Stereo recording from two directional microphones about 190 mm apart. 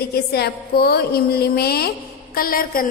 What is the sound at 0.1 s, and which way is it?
A woman's voice, 55° left (ahead or behind).